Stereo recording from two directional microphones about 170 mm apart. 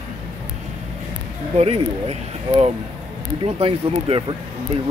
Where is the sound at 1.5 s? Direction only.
40° right (ahead or behind).